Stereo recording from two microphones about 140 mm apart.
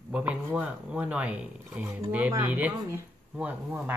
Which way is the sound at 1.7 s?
20° right (ahead or behind).